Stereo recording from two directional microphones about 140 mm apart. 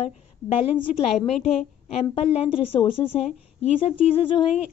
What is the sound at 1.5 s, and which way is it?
A woman's voice, 45° left (ahead or behind).